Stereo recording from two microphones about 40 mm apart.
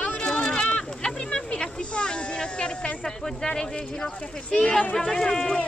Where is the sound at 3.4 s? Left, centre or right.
Centre.